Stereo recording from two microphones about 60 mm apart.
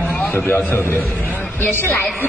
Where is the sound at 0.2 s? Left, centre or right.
Left.